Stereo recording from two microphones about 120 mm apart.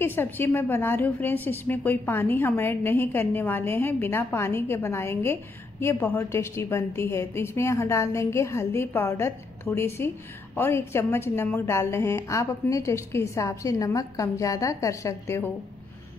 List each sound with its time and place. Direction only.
0.0 s a woman's voice: 20° left (ahead or behind)